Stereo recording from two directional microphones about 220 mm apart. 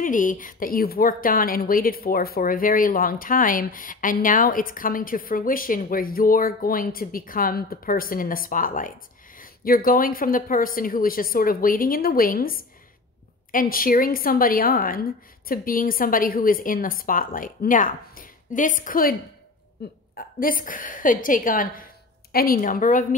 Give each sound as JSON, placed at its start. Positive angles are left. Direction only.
{"t": 0.0, "sound": "a woman's voice", "side_deg": 35}